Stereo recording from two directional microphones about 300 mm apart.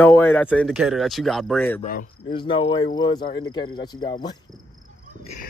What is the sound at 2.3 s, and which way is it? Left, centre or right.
Speech, centre.